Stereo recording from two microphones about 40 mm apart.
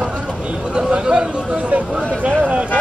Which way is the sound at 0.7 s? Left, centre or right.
Right.